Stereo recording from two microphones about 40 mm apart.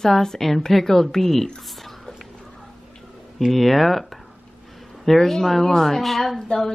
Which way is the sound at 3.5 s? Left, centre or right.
Centre.